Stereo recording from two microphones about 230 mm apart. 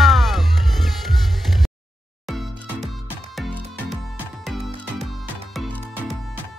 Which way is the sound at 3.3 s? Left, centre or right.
Centre.